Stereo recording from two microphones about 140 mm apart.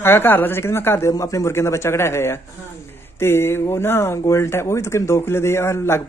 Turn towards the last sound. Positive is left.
turn(degrees=15)  # may be behind; listen again after turning